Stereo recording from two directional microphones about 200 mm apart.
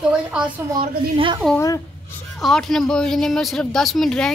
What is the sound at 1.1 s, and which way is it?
Speech, 25° right (ahead or behind).